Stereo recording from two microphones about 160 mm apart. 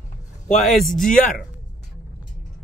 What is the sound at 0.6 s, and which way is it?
Speech, centre (ahead or behind).